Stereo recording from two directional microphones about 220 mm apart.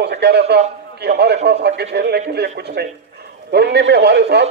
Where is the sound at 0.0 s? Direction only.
50° right (ahead or behind).